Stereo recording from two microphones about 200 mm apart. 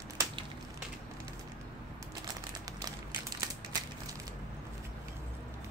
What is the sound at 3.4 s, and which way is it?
Crushing, 20° right (ahead or behind).